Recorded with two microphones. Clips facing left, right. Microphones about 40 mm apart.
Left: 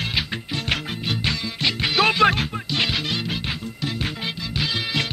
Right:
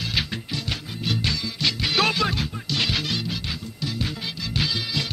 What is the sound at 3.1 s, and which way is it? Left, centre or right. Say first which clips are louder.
Music: left 2 dB; left.